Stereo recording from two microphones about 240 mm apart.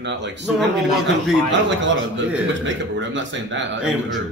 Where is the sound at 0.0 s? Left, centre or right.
Right.